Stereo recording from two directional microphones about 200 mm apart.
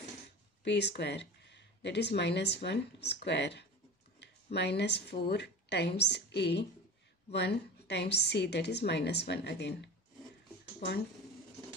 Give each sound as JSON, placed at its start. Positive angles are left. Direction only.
{"t": 0.7, "sound": "speech", "side_deg": 60}